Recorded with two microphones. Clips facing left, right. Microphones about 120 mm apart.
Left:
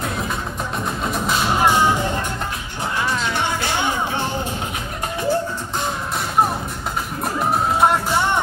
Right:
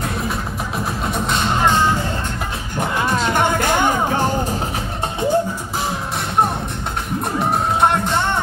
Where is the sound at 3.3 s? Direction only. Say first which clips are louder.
Right 5 dB; 50° right (ahead or behind).